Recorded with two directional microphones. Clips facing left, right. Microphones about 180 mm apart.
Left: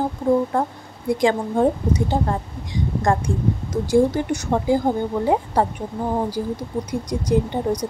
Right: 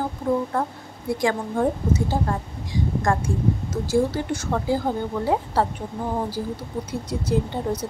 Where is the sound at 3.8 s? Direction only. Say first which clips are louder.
Left 4 dB; 15° left (ahead or behind).